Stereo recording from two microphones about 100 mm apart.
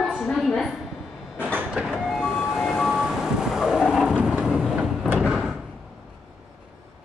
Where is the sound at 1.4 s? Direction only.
20° right (ahead or behind).